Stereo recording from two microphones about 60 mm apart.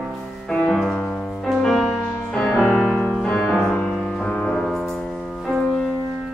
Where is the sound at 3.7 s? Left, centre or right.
Left.